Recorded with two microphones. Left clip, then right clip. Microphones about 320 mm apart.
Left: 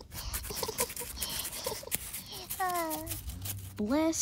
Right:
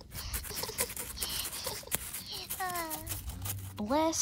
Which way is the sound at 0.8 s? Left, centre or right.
Centre.